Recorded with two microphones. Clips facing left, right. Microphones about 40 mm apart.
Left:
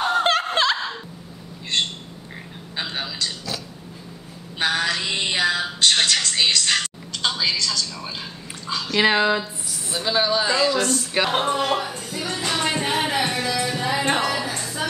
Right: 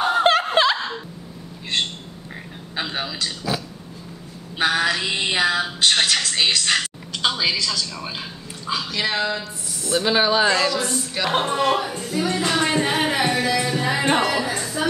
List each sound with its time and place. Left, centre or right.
0.0 s snicker: centre
2.7 s a sound: centre
4.6 s speech: centre
8.9 s speech: left
9.9 s speech: centre
11.3 s music: centre
14.6 s a sound: centre